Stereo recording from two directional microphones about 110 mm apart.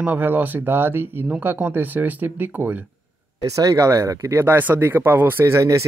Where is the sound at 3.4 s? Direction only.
30° right (ahead or behind).